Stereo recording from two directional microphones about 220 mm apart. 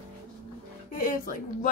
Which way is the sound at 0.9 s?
35° left (ahead or behind).